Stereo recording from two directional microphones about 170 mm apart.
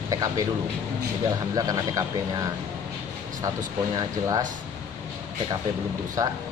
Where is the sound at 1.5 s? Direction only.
20° right (ahead or behind).